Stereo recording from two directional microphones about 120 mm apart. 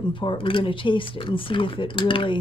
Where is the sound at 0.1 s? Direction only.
45° left (ahead or behind).